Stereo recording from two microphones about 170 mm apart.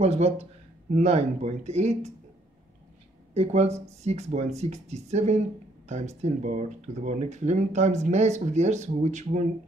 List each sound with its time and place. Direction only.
0.0 s speech: 35° right (ahead or behind)
3.3 s speech: 40° right (ahead or behind)